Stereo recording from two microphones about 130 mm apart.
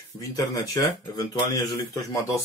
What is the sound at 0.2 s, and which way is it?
Speech, 25° left (ahead or behind).